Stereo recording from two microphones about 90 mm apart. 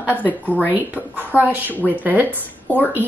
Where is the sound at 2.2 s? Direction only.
20° left (ahead or behind).